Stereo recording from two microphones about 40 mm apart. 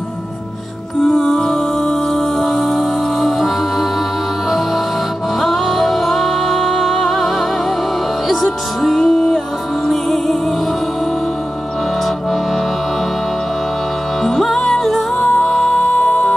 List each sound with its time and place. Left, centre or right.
1.1 s music: centre
5.4 s music: centre
14.2 s music: centre
15.7 s music: left